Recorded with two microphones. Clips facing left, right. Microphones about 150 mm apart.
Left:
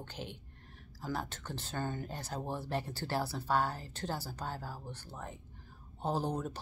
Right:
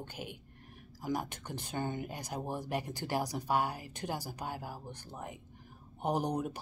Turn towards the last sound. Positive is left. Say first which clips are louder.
# right 2 dB
turn(degrees=-15)  # may be behind; listen again after turning